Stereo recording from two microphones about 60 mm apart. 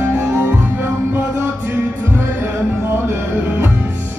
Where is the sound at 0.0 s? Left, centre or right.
Right.